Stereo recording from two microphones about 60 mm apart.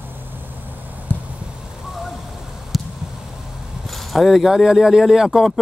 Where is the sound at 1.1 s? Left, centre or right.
Left.